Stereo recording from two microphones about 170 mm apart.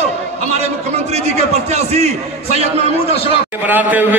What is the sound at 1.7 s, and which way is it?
A man's voice, 40° right (ahead or behind).